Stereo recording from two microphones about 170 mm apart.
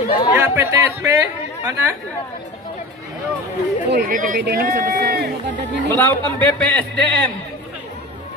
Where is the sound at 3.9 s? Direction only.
55° right (ahead or behind).